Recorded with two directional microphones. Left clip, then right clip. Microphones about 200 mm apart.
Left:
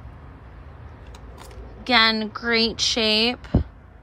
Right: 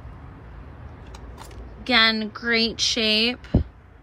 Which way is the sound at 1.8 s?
5° left (ahead or behind).